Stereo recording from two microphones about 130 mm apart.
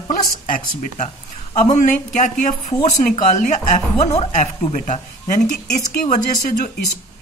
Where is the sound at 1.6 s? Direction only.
75° left (ahead or behind).